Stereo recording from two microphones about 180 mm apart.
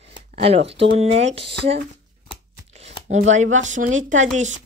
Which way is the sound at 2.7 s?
35° right (ahead or behind).